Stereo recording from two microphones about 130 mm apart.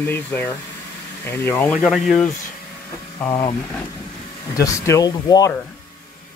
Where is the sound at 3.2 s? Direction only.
10° left (ahead or behind).